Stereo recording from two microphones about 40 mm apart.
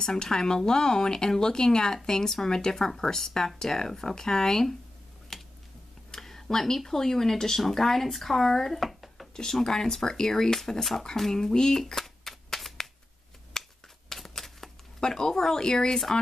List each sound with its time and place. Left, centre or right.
0.0 s speech: centre
5.3 s typing: centre
6.1 s speech: centre
9.3 s speech: centre
11.9 s shuffling cards: centre
13.5 s finger snapping: centre
15.0 s speech: centre